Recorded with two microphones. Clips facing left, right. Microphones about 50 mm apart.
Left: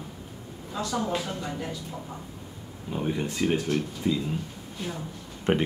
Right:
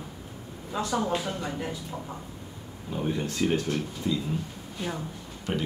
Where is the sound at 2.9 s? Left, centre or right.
Centre.